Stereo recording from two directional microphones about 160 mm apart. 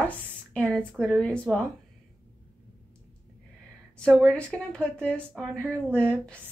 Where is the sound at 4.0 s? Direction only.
5° left (ahead or behind).